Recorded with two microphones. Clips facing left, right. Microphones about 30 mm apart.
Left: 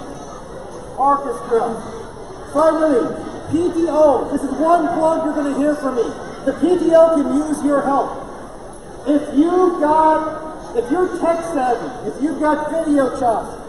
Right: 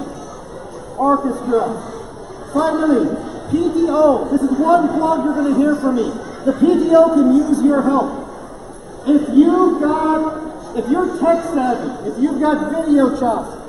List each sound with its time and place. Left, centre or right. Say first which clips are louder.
0.9 s a man's voice: even; centre
3.5 s a man's voice: right 1 dB; centre
9.2 s a man's voice: right 3 dB; centre
12.8 s a man's voice: right 4 dB; centre
13.2 s a man's voice: even; centre